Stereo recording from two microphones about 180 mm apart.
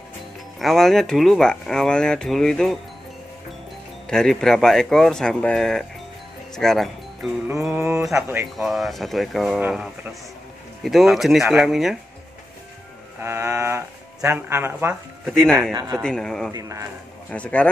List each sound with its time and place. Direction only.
0.6 s speech: centre (ahead or behind)
4.1 s speech: 5° left (ahead or behind)
7.6 s speech: 10° right (ahead or behind)
13.2 s speech: 15° right (ahead or behind)
15.3 s speech: 5° left (ahead or behind)
15.7 s a man's voice: 20° right (ahead or behind)
16.0 s speech: 5° left (ahead or behind)
16.5 s speech: 15° right (ahead or behind)
17.3 s speech: 5° left (ahead or behind)